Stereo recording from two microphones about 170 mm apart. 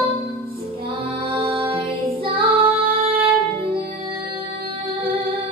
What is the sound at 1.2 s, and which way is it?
Music, 30° right (ahead or behind).